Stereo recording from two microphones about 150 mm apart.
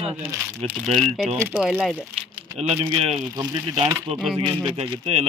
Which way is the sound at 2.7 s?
45° right (ahead or behind).